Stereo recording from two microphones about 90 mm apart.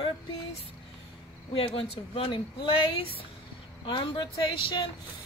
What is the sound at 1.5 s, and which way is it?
Speech, 85° left.